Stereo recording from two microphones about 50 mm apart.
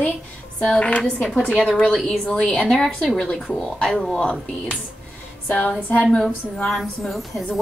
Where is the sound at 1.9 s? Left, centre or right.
Centre.